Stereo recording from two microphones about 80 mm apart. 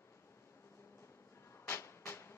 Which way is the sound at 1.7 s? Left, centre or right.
Left.